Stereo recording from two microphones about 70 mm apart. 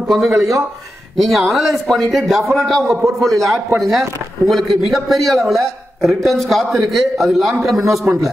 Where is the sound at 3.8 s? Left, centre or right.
Centre.